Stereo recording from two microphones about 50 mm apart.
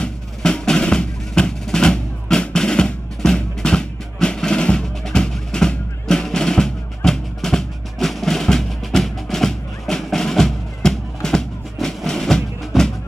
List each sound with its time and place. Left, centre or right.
0.0 s music: centre